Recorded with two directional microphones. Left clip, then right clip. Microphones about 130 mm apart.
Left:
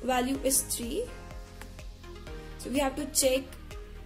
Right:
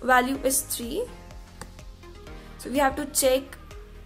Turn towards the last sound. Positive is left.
turn(degrees=20)  # may be behind; listen again after turning